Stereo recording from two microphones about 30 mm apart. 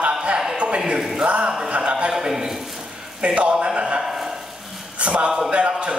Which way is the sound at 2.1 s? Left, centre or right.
Centre.